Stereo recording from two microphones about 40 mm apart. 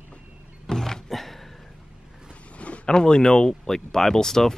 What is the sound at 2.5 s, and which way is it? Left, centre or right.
Zipper, left.